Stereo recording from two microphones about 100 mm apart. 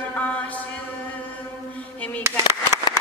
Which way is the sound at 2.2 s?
25° right (ahead or behind).